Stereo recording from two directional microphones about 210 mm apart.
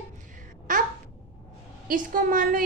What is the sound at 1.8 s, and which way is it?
Speech, 40° right (ahead or behind).